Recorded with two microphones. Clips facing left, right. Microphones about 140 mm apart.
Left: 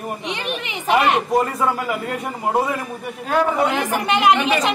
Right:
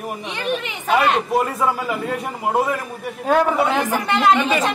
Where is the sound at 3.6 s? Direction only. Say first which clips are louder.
Right 1 dB; 15° left (ahead or behind).